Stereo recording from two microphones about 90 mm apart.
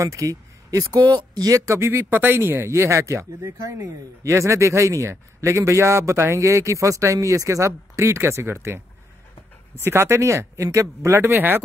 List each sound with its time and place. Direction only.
0.0 s speech: 35° right (ahead or behind)
1.0 s speech: 55° right (ahead or behind)
1.7 s speech: 30° right (ahead or behind)
9.8 s speech: 30° right (ahead or behind)